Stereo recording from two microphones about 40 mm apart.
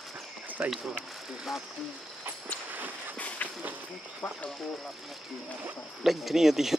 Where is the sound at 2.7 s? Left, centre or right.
Right.